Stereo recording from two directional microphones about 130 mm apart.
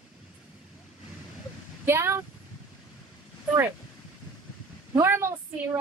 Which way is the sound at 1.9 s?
20° right (ahead or behind).